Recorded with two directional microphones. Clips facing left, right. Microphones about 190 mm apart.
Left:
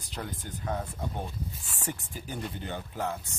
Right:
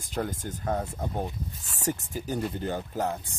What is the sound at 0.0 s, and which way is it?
A man's voice, 45° right (ahead or behind).